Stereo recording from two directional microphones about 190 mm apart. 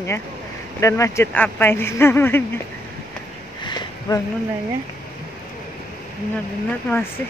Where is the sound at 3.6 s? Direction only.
20° left (ahead or behind).